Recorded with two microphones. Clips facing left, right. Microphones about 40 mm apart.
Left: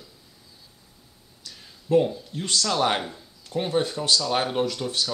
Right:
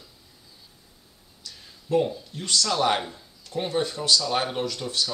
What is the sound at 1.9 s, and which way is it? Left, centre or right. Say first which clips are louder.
Speech: left 3 dB; left.